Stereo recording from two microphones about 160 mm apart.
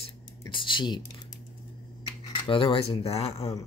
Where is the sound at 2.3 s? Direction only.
35° left (ahead or behind).